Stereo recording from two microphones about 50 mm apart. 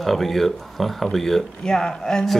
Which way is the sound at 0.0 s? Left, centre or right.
Centre.